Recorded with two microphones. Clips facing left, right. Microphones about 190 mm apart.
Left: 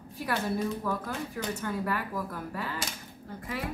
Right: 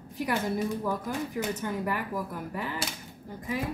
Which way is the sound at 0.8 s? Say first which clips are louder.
Right 2 dB; 15° right (ahead or behind).